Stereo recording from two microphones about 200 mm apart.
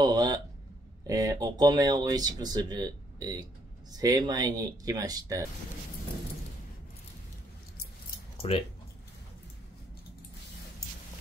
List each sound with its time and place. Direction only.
0.0 s speech: 20° right (ahead or behind)
8.4 s speech: 25° left (ahead or behind)